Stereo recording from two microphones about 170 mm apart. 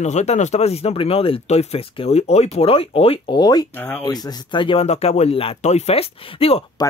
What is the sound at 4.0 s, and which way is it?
Speech, 25° left (ahead or behind).